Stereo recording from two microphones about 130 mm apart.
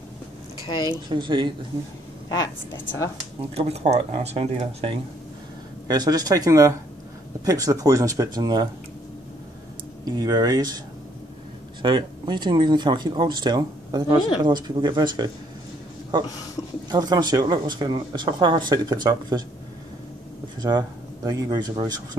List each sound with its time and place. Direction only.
0.7 s a woman's voice: 35° left (ahead or behind)
0.9 s speech: 35° right (ahead or behind)
2.2 s a woman's voice: 30° left (ahead or behind)
3.5 s speech: 55° right (ahead or behind)
5.9 s speech: 30° right (ahead or behind)
10.0 s speech: 30° right (ahead or behind)
11.8 s speech: 35° right (ahead or behind)
16.9 s speech: 30° right (ahead or behind)
20.6 s speech: 30° right (ahead or behind)